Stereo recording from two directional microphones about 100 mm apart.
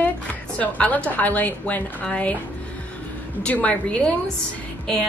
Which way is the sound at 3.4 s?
15° left (ahead or behind).